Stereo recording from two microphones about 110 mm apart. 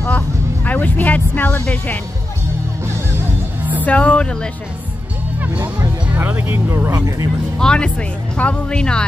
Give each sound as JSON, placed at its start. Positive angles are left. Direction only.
{"t": 0.7, "sound": "speech", "side_deg": 15}
{"t": 3.8, "sound": "speech", "side_deg": 15}
{"t": 5.4, "sound": "music", "side_deg": -20}
{"t": 6.5, "sound": "speech", "side_deg": -20}
{"t": 6.9, "sound": "speech", "side_deg": -30}
{"t": 7.5, "sound": "speech", "side_deg": 5}